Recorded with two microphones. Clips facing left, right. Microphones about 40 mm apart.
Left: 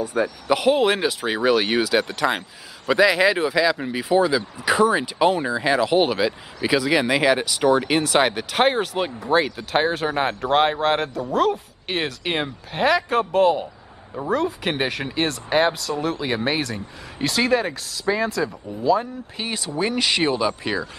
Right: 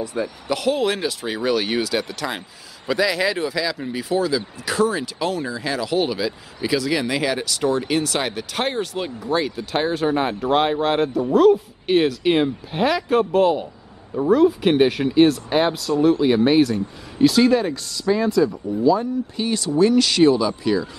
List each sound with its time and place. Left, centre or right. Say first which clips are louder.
0.0 s speech: left 3 dB; left